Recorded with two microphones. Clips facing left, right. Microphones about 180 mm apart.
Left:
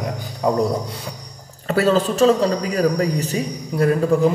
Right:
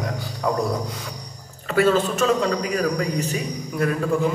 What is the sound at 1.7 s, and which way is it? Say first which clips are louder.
A man's voice: left 1 dB; 35° left (ahead or behind).